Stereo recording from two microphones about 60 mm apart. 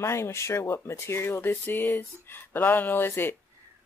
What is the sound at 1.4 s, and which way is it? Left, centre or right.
Speech, left.